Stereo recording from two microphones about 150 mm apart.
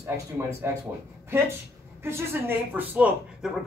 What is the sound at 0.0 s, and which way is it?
Speech, 15° right (ahead or behind).